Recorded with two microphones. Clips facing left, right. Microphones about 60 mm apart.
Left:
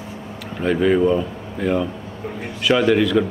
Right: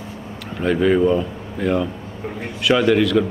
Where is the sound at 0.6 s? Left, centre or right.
Centre.